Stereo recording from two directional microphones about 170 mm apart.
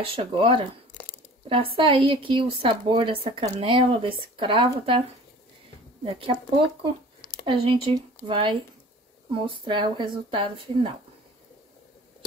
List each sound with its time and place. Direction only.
0.0 s speech: 30° right (ahead or behind)
1.8 s speech: 30° right (ahead or behind)
6.0 s speech: 30° right (ahead or behind)